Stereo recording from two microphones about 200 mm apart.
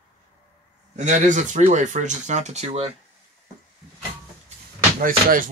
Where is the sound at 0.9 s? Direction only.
35° right (ahead or behind).